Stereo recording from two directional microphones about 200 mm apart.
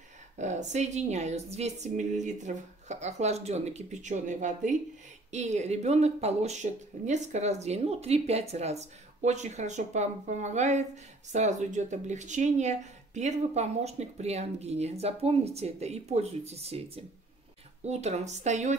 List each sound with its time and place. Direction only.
0.4 s speech: 35° right (ahead or behind)